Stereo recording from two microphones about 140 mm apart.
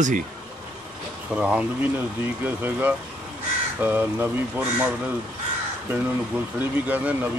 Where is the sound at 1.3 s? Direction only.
5° right (ahead or behind).